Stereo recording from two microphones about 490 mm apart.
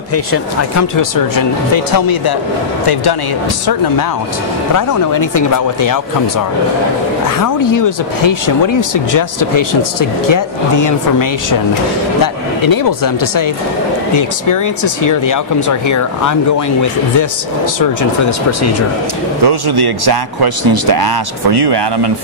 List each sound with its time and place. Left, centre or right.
0.1 s speech: left
4.7 s speech: left
7.2 s speech: left
12.6 s speech: left
18.6 s speech: left
19.4 s speech: right